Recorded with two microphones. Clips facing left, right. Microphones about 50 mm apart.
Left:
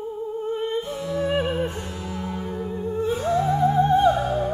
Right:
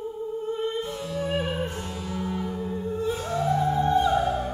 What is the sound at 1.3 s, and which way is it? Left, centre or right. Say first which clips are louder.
Music: left 3 dB; left.